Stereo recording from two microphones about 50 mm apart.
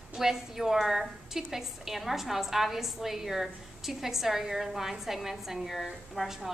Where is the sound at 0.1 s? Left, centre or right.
Centre.